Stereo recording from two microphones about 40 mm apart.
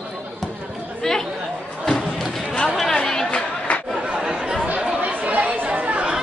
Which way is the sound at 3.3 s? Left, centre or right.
Left.